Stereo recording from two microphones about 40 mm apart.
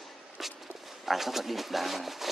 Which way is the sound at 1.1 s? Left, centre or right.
Centre.